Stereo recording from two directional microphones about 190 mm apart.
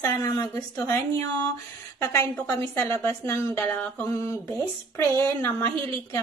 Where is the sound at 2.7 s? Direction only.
10° left (ahead or behind).